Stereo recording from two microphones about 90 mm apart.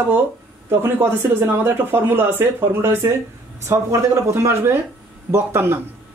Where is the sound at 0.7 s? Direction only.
25° right (ahead or behind).